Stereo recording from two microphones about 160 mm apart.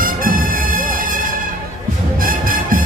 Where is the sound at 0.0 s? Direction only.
60° right (ahead or behind).